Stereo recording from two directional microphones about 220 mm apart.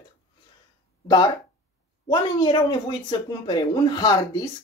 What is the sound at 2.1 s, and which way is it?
Speech, 20° left (ahead or behind).